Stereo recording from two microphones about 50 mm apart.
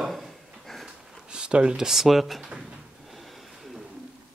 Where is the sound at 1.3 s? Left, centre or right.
Centre.